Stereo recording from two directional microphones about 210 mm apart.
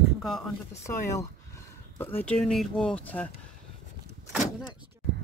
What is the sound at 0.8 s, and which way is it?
Speech, 15° left (ahead or behind).